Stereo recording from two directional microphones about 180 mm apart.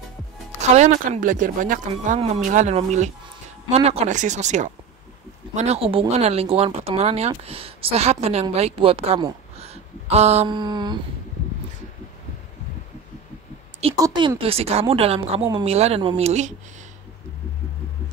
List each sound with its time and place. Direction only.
0.6 s speech: 40° right (ahead or behind)
9.6 s a sound: 35° right (ahead or behind)
13.9 s speech: 25° right (ahead or behind)
14.4 s speech: 35° right (ahead or behind)